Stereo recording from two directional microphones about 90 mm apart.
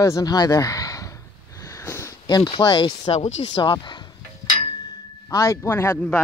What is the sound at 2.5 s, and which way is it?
Speech, 75° left (ahead or behind).